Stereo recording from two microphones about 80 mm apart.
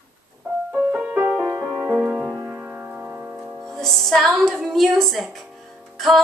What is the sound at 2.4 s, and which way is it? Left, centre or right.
Music, right.